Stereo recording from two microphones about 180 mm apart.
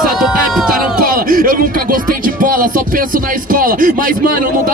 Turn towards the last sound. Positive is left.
turn(degrees=-50)  # may be behind; listen again after turning